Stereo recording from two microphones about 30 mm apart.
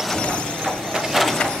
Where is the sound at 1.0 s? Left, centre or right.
Centre.